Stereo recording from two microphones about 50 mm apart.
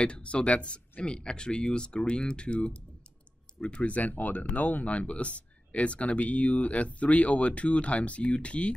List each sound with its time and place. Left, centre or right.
0.0 s speech: left